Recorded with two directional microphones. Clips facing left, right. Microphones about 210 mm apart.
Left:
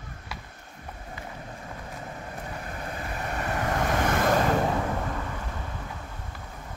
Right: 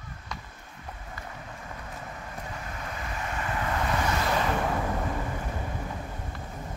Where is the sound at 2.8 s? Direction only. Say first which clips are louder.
Left 2 dB; 35° left (ahead or behind); by 4.3 s 50° left (ahead or behind).